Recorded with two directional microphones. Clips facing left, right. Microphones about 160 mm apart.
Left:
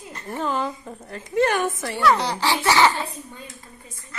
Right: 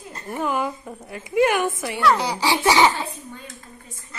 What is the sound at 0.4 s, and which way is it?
A woman's voice, 10° right (ahead or behind).